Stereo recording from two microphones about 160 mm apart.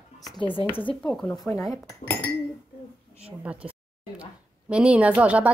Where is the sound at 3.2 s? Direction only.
10° right (ahead or behind).